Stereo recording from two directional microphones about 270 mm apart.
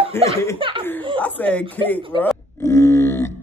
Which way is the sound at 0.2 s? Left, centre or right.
Centre.